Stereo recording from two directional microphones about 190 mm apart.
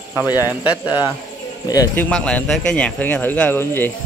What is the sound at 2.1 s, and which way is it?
Speech, 5° left (ahead or behind).